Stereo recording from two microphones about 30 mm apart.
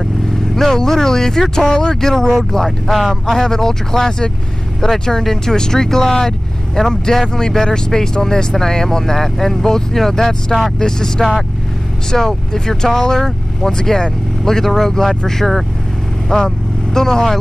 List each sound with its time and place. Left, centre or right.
0.6 s speech: centre
2.9 s speech: centre
3.4 s speech: centre
16.3 s speech: left